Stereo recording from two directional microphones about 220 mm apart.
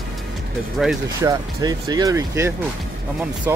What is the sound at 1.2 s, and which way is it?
Speech, 15° right (ahead or behind).